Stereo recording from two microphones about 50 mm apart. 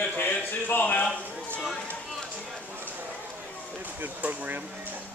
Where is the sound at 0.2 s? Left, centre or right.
Left.